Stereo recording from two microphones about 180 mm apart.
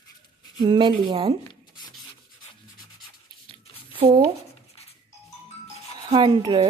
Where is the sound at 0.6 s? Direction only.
25° right (ahead or behind).